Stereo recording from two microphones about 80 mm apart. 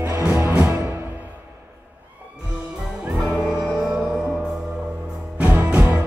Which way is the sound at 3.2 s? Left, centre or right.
Centre.